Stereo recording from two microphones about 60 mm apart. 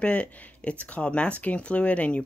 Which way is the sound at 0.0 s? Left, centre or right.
Left.